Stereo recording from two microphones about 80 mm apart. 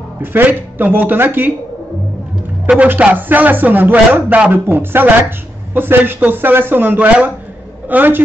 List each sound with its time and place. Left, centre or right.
0.2 s a man's voice: right
2.9 s a man's voice: right